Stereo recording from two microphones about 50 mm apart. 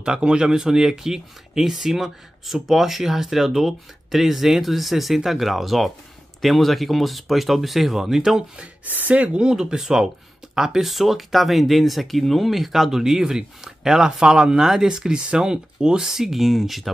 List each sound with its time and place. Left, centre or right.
0.0 s speech: centre
8.8 s speech: right
9.4 s speech: centre